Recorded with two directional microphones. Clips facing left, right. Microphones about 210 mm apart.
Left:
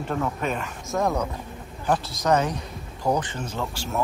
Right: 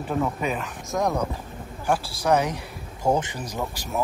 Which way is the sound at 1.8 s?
10° right (ahead or behind).